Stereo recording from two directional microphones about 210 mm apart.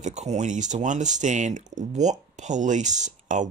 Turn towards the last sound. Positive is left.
turn(degrees=-35)  # may be behind; listen again after turning